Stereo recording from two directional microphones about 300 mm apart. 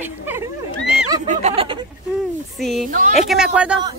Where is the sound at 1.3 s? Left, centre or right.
Right.